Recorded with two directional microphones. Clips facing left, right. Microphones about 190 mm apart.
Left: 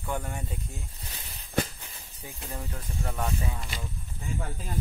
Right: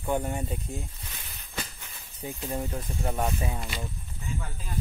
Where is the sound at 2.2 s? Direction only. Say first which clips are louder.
Right 7 dB; 30° right (ahead or behind).